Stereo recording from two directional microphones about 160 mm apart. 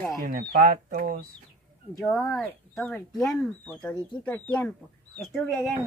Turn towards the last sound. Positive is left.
turn(degrees=0)  # may be behind; listen again after turning